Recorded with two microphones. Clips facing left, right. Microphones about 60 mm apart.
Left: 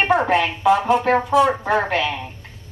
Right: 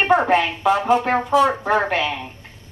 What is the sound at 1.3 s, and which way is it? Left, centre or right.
Speech, centre.